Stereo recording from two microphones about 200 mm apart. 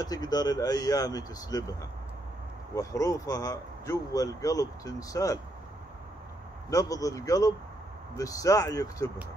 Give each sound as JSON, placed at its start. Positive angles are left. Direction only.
{"t": 0.0, "sound": "speech", "side_deg": 20}
{"t": 6.7, "sound": "speech", "side_deg": 15}